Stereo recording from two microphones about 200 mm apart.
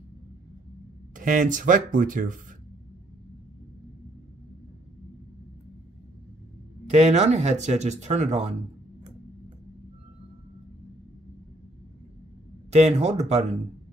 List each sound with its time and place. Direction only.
1.1 s speech: 40° right (ahead or behind)
6.9 s speech: 35° right (ahead or behind)
12.7 s speech: 35° right (ahead or behind)